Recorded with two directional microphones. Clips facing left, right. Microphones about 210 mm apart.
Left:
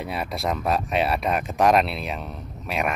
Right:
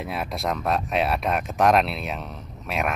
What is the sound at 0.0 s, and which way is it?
Speech, centre (ahead or behind).